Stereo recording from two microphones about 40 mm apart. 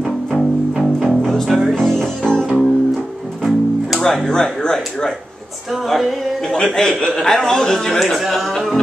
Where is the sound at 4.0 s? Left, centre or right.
Centre.